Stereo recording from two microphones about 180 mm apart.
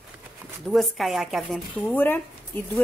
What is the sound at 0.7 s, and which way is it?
Speech, centre (ahead or behind).